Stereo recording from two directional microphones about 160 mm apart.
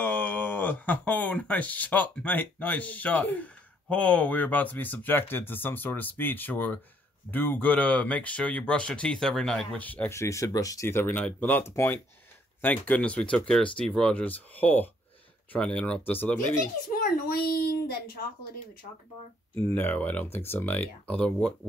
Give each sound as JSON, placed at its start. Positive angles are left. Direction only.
{"t": 0.0, "sound": "speech", "side_deg": 10}
{"t": 16.9, "sound": "a child's voice", "side_deg": 65}
{"t": 19.5, "sound": "speech", "side_deg": 10}